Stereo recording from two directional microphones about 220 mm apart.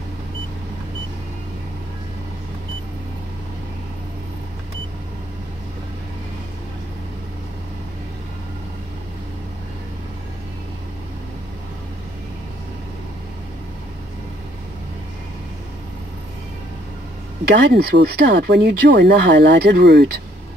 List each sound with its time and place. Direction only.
17.5 s speech: 50° right (ahead or behind)